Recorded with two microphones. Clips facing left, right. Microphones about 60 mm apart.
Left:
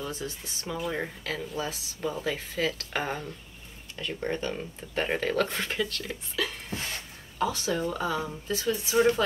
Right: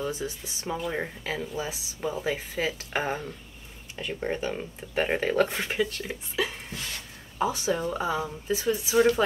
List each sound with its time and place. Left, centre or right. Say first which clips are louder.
0.0 s speech: right 4 dB; centre
6.7 s a sound: left 2 dB; left
7.3 s speech: right 2 dB; centre